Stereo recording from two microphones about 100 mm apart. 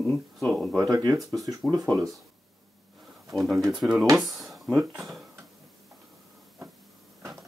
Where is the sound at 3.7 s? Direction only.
5° right (ahead or behind).